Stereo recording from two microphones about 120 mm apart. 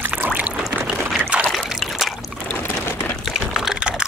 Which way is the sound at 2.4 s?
20° left (ahead or behind).